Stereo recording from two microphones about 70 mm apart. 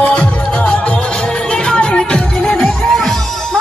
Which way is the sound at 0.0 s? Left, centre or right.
Centre.